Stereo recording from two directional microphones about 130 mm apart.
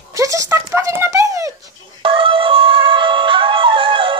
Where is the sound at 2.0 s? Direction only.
45° right (ahead or behind).